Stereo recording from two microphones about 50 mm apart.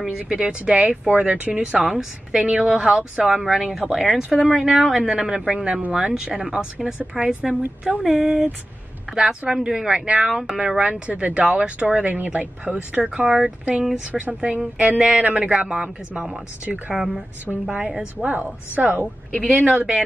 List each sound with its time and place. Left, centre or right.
0.3 s speech: centre
1.9 s speech: centre
16.2 s speech: centre
16.6 s speech: right
16.9 s speech: centre
18.1 s speech: right